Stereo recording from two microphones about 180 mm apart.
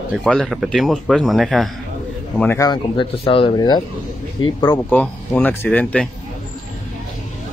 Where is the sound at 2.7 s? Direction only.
30° left (ahead or behind).